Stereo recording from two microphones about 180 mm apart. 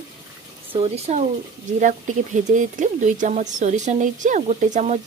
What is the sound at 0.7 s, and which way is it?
Speech, 35° right (ahead or behind).